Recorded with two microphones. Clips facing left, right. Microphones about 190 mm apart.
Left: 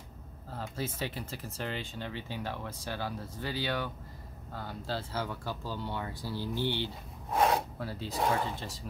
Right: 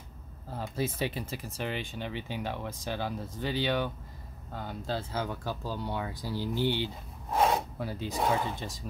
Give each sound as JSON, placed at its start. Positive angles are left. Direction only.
{"t": 0.5, "sound": "speech", "side_deg": -15}